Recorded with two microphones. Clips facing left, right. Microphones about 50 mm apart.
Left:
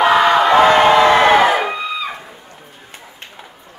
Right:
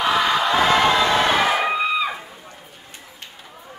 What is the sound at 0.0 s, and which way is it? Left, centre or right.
Crowd, left.